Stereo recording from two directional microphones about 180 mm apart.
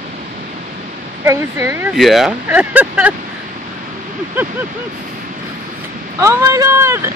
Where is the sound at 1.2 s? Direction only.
15° right (ahead or behind).